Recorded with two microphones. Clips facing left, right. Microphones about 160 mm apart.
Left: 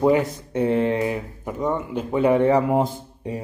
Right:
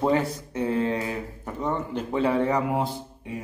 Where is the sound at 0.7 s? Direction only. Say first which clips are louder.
Left 4 dB; 25° left (ahead or behind).